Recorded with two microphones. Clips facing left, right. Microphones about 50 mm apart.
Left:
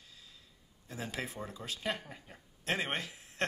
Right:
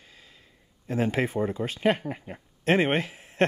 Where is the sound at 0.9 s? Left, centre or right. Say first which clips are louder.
Right 14 dB; right.